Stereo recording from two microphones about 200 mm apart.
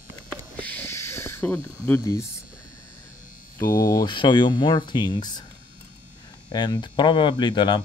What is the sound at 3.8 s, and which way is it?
Speech, 20° left (ahead or behind).